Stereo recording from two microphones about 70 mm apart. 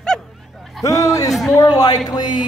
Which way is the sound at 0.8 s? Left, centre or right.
Left.